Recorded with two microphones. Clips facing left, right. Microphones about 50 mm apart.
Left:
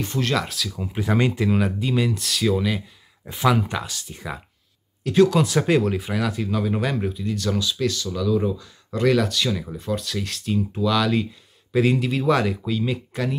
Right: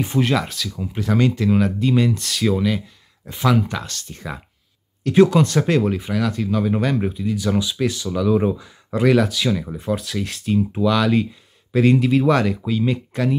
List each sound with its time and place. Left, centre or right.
0.0 s speech: centre
0.4 s speech: centre
0.7 s speech: centre
1.5 s speech: centre
7.0 s speech: centre
8.3 s speech: right
8.5 s speech: centre